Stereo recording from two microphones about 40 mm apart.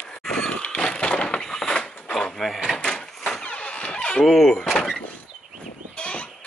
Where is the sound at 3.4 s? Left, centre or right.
Left.